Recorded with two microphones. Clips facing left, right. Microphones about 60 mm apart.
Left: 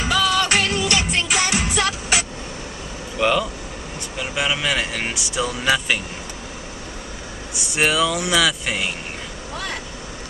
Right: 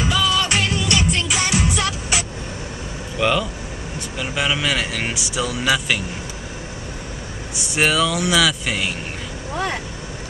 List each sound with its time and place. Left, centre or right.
0.1 s music: left
3.2 s speech: centre
7.7 s speech: centre